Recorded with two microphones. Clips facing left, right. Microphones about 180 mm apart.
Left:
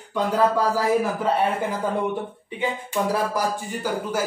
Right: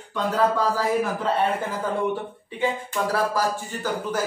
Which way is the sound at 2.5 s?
15° left (ahead or behind).